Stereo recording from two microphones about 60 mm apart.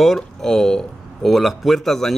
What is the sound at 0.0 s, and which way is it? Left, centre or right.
Speech, centre.